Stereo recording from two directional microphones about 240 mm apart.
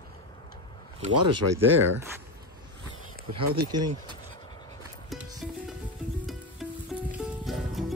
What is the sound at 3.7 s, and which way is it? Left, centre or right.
Speech, centre.